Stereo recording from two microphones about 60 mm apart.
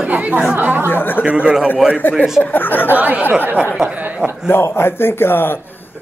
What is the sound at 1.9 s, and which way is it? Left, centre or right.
Speech, left.